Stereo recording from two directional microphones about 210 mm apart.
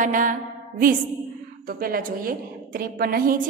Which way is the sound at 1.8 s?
45° right (ahead or behind).